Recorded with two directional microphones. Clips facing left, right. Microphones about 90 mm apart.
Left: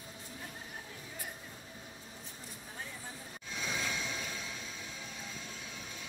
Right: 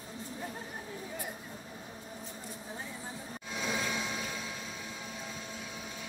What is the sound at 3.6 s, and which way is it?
Vehicle, 15° right (ahead or behind).